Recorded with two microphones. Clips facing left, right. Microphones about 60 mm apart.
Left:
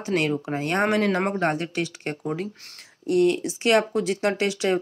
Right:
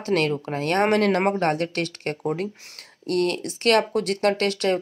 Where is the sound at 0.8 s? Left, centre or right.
Right.